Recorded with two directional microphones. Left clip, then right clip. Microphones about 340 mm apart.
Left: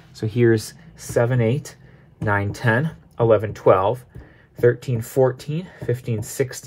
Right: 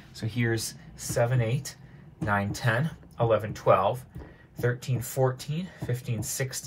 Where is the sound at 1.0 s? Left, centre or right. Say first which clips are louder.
Left 8 dB; left.